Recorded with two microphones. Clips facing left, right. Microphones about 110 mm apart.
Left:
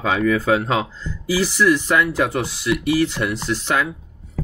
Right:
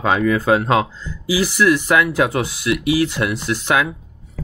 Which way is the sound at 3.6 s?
85° right.